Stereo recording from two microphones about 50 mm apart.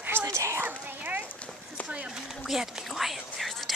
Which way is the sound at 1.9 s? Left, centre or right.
Centre.